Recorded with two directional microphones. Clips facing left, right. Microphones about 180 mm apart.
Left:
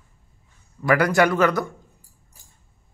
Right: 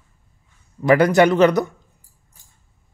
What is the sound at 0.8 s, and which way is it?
Speech, 25° right (ahead or behind).